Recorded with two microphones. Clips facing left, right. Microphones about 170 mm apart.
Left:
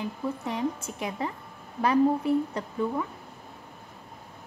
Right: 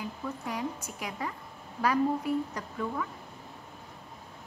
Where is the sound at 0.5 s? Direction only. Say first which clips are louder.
Left 4 dB; 25° left (ahead or behind).